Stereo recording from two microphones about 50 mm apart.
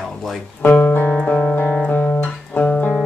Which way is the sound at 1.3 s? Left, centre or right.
Left.